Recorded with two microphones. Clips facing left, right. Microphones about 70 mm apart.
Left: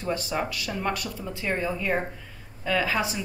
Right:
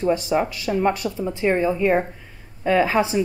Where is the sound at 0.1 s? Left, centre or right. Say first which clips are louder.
Right 3 dB; right.